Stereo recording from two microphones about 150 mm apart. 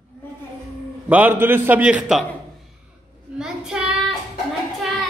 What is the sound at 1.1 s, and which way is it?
A man's voice, 10° right (ahead or behind).